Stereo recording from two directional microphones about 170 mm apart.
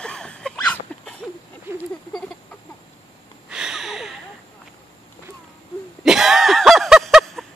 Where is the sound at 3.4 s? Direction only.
5° right (ahead or behind).